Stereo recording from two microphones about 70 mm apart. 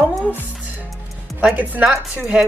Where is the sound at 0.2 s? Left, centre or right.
Left.